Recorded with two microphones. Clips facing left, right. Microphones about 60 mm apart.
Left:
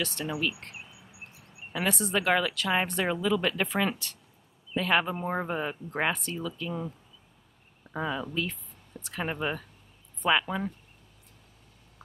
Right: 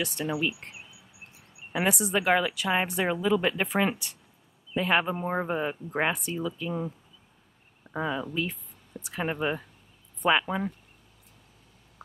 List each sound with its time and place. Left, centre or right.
0.0 s speech: centre
7.9 s speech: centre
8.3 s speech: centre